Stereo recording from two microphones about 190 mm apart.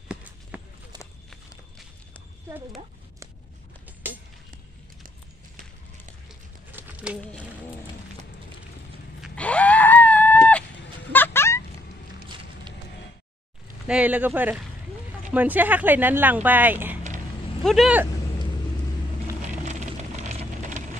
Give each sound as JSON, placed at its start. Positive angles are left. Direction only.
{"t": 0.1, "sound": "clip-clop", "side_deg": -10}
{"t": 6.7, "sound": "a sound", "side_deg": -10}
{"t": 9.2, "sound": "screaming", "side_deg": 5}
{"t": 11.1, "sound": "a sound", "side_deg": 10}
{"t": 13.8, "sound": "speech", "side_deg": -5}
{"t": 19.4, "sound": "vehicle", "side_deg": -40}